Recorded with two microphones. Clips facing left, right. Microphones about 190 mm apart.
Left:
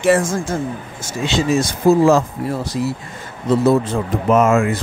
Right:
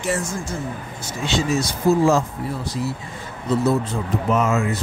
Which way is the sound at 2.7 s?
65° left (ahead or behind).